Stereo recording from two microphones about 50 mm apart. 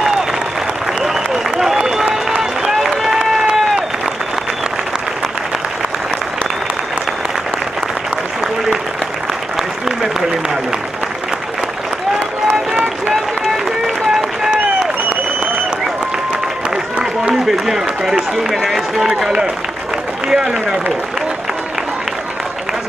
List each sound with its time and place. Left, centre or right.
1.0 s applause: centre
3.2 s run: centre
9.6 s applause: centre
16.7 s run: centre
18.5 s run: centre
20.2 s a sound: centre